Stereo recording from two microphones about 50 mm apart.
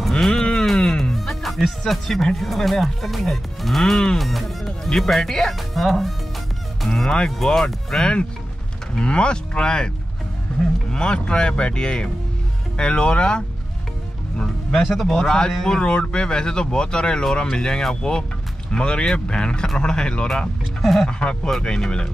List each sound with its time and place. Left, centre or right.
0.1 s music: centre
1.9 s speech: centre
6.8 s fowl: centre
7.1 s speech: centre
10.9 s speech: centre
14.4 s speech: centre
15.6 s speech: centre
20.8 s speech: centre
21.1 s speech: left